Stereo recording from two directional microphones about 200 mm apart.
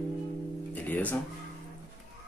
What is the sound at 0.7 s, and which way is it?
Guitar, 10° left (ahead or behind).